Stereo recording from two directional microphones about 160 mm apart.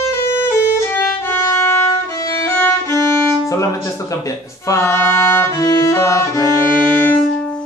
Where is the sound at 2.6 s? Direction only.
15° left (ahead or behind).